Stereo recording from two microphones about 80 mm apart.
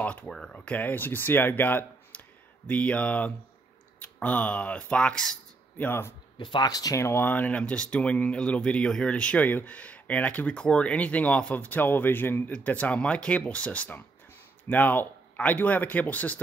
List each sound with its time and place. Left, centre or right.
0.0 s speech: centre
5.8 s speech: left
6.3 s speech: left
7.0 s speech: left